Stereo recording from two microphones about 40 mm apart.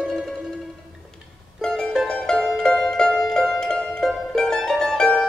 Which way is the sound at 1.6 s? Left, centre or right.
Centre.